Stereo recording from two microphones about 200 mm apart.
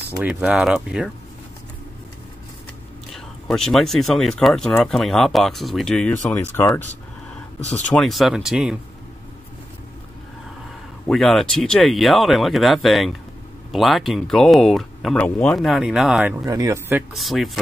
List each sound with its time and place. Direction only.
0.1 s speech: 5° right (ahead or behind)
3.1 s speech: centre (ahead or behind)
7.9 s speech: centre (ahead or behind)
11.1 s speech: centre (ahead or behind)
16.4 s speech: 15° right (ahead or behind)
17.1 s speech: centre (ahead or behind)